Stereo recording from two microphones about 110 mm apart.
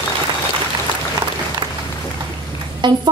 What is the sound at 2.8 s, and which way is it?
Speech, 45° right (ahead or behind).